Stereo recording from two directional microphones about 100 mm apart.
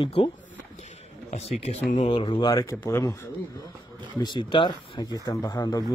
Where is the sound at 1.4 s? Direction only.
90° left.